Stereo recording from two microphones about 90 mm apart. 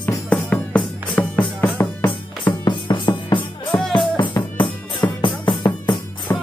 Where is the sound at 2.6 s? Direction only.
55° left (ahead or behind).